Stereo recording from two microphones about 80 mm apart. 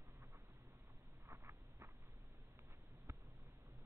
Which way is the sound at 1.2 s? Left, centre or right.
Right.